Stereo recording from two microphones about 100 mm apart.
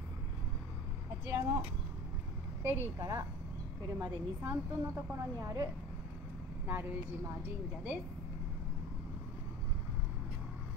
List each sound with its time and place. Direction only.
1.2 s a woman's voice: 30° right (ahead or behind)
2.6 s a woman's voice: 25° right (ahead or behind)
6.7 s a woman's voice: 20° right (ahead or behind)